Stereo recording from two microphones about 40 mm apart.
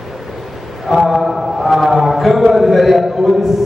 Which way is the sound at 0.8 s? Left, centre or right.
Centre.